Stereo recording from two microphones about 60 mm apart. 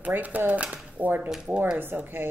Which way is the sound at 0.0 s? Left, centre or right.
Right.